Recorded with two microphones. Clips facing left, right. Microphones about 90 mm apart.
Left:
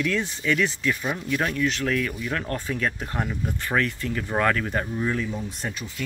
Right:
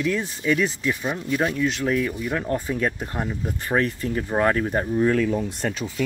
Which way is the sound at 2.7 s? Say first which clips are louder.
Right 2 dB; 25° right (ahead or behind).